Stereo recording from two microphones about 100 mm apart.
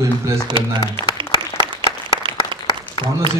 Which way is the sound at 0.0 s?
30° right (ahead or behind).